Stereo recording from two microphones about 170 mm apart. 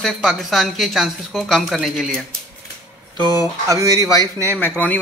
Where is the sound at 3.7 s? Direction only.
20° right (ahead or behind).